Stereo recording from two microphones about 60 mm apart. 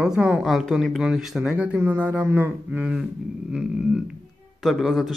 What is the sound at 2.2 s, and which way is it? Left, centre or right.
Speech, right.